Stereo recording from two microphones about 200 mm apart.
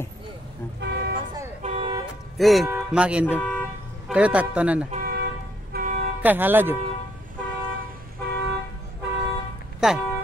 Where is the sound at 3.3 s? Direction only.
5° left (ahead or behind).